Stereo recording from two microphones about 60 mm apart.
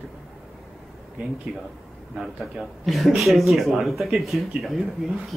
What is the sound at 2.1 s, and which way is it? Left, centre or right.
Speech, centre.